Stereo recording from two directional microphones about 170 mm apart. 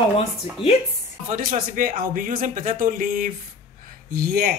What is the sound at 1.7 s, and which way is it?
Speech, 55° right (ahead or behind).